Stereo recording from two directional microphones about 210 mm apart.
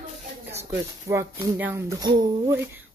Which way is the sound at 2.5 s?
10° right (ahead or behind).